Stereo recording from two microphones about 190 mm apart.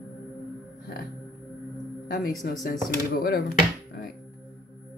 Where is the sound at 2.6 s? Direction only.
50° left (ahead or behind).